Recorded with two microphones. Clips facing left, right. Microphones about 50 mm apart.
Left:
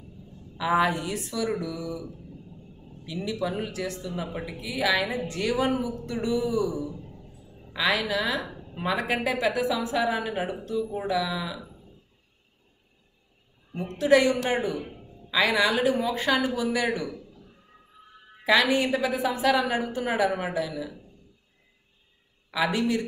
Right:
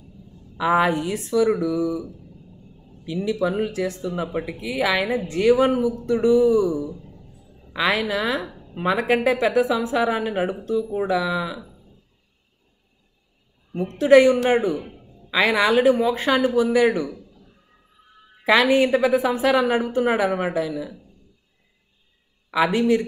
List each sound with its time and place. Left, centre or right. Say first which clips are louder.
0.6 s a woman's voice: right 4 dB; right
3.1 s a woman's voice: right 7 dB; right
13.9 s a woman's voice: right 7 dB; right
18.4 s a woman's voice: right 5 dB; right
22.5 s a woman's voice: right 6 dB; right